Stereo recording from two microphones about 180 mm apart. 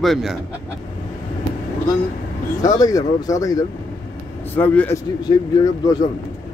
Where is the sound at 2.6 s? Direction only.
20° left (ahead or behind).